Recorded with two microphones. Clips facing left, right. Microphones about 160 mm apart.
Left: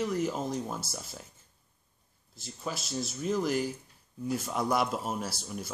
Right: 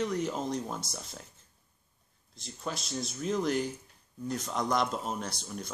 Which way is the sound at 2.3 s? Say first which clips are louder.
Even; 5° left (ahead or behind).